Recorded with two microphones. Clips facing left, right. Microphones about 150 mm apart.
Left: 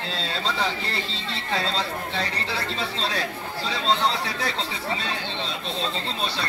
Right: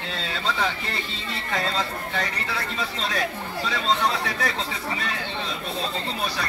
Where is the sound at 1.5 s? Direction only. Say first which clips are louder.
Even; 30° left (ahead or behind).